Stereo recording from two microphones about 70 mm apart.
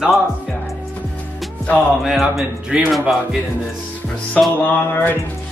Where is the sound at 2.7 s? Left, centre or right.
Centre.